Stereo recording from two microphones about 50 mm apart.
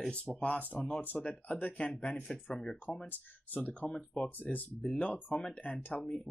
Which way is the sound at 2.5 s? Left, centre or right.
Centre.